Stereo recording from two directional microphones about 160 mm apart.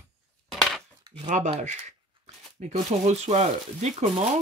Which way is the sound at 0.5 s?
Centre (ahead or behind).